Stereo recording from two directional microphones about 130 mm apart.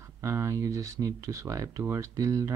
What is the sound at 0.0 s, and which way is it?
Speech, 20° right (ahead or behind).